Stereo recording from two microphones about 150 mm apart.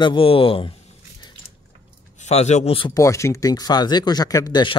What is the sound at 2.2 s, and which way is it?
Speech, 50° left (ahead or behind).